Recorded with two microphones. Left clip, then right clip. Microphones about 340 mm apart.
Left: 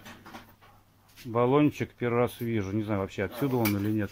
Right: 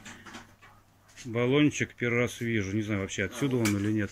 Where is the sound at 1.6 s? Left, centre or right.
Left.